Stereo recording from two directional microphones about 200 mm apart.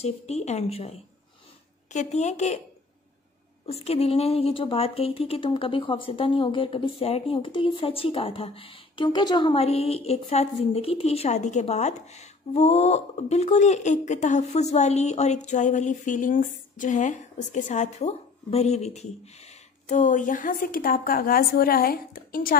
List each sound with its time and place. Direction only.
0.0 s a woman's voice: 35° left (ahead or behind)
3.6 s a woman's voice: 30° left (ahead or behind); by 22.6 s 45° left (ahead or behind)